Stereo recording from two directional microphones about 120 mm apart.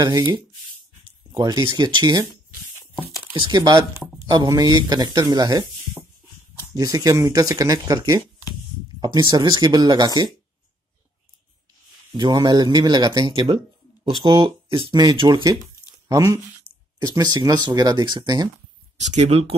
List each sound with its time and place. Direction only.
0.0 s speech: 35° right (ahead or behind)
3.3 s speech: 35° right (ahead or behind)
6.7 s speech: 30° right (ahead or behind)
12.1 s speech: 35° right (ahead or behind)
13.3 s speech: 45° right (ahead or behind)
18.9 s speech: 70° right (ahead or behind)